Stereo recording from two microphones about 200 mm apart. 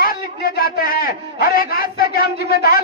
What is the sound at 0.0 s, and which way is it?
A man's voice, 50° left (ahead or behind).